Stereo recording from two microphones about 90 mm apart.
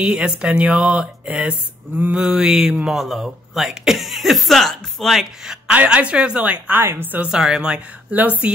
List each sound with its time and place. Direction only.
0.0 s a woman's voice: 10° right (ahead or behind)
7.2 s a woman's voice: 10° right (ahead or behind)